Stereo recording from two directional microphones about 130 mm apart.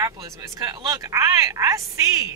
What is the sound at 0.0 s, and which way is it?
Speech, 25° right (ahead or behind).